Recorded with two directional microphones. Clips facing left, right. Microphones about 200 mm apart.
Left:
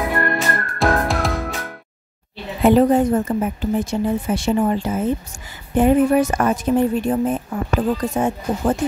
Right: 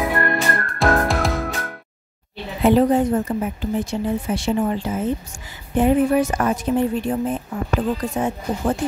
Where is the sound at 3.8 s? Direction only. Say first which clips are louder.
Left 2 dB; 45° left (ahead or behind).